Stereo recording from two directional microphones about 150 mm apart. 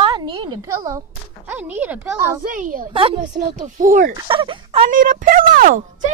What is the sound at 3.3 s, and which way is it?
Speech, 60° right (ahead or behind).